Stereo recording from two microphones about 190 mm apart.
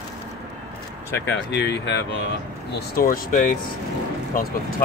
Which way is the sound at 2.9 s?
50° left (ahead or behind).